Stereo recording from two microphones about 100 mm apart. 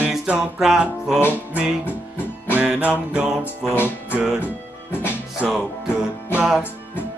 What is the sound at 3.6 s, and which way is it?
Music, 20° left (ahead or behind).